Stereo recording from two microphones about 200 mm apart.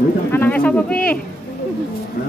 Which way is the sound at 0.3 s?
10° left (ahead or behind).